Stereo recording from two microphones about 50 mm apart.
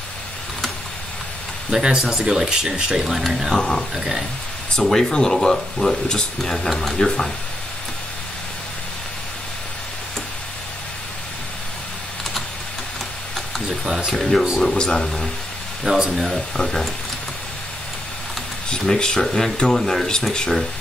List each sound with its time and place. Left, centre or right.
1.7 s speech: centre
3.0 s speech: centre
3.5 s speech: centre
3.9 s speech: centre
4.7 s speech: centre
13.8 s speech: centre
14.6 s speech: centre
15.8 s speech: centre
16.5 s speech: centre
18.7 s speech: centre